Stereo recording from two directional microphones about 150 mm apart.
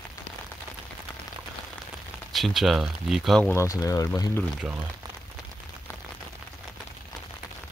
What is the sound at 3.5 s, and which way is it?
Speech, 20° left (ahead or behind).